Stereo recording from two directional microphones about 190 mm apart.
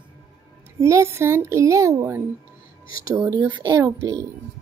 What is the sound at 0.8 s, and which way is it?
Speech, 15° right (ahead or behind).